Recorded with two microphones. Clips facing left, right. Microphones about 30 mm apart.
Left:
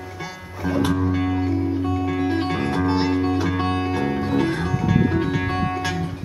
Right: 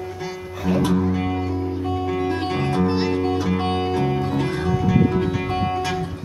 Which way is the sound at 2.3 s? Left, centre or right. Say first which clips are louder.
Even; centre.